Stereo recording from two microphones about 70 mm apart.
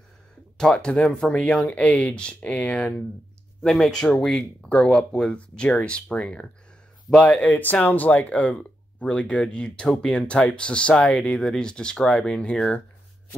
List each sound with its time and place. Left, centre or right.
0.6 s speech: centre
3.6 s speech: centre
4.0 s speech: centre